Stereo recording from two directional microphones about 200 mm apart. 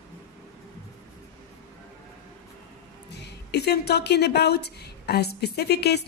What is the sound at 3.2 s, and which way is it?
A woman's voice, 55° left (ahead or behind).